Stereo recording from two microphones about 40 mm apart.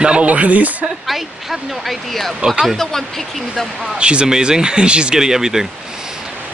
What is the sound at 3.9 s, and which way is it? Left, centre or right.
Speech, right.